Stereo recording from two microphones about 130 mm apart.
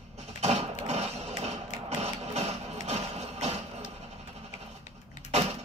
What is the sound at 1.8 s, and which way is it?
Mechanisms, 60° right (ahead or behind).